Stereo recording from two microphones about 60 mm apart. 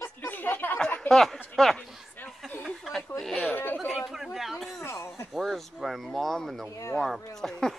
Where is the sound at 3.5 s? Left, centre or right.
Left.